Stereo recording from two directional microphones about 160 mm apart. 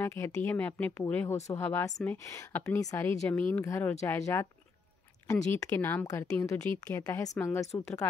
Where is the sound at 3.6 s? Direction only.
20° left (ahead or behind).